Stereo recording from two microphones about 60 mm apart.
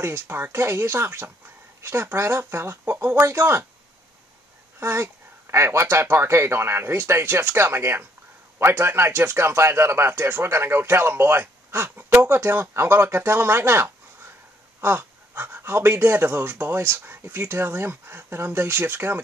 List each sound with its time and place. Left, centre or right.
0.0 s speech: right
4.7 s speech: right